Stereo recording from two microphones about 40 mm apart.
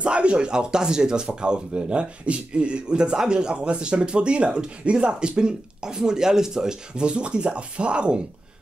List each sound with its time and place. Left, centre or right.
0.0 s speech: right